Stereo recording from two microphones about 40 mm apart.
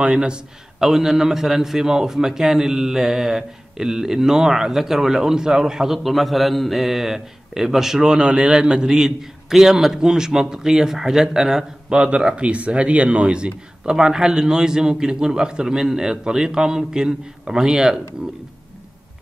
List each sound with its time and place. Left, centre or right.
0.0 s a man's voice: right
0.7 s a man's voice: centre
8.0 s a man's voice: right
12.4 s a man's voice: right